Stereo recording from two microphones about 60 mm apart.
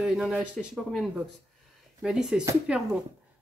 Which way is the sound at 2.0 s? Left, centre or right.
Centre.